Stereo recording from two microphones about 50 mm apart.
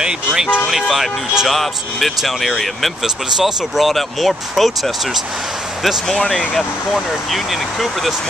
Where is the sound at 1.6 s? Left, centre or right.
Centre.